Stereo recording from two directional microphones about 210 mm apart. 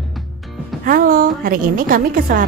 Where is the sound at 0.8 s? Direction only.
40° right (ahead or behind).